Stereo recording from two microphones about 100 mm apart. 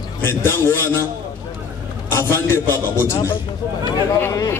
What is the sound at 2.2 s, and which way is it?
A man's voice, 25° left (ahead or behind).